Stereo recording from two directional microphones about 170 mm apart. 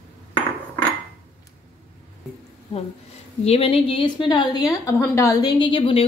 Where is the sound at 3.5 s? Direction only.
35° left (ahead or behind).